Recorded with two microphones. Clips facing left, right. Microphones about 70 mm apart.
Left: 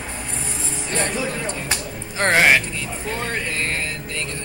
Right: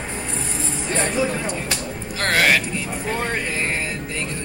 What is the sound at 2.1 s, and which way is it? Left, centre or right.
Speech, left.